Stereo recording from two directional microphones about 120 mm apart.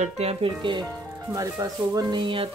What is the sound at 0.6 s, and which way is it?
Speech, 40° right (ahead or behind).